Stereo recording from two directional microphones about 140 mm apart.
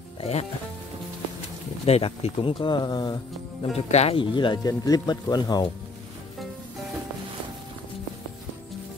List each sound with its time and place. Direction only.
0.2 s speech: 50° left (ahead or behind)
1.9 s speech: 45° left (ahead or behind); by 3.2 s 30° left (ahead or behind)
3.7 s speech: 50° left (ahead or behind); by 5.7 s 30° left (ahead or behind)